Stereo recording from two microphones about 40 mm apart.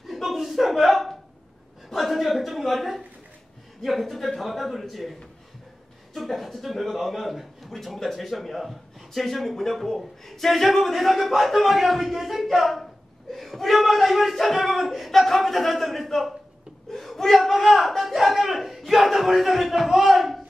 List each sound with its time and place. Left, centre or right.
0.0 s a sound: centre
3.8 s speech: centre
6.1 s a man's voice: centre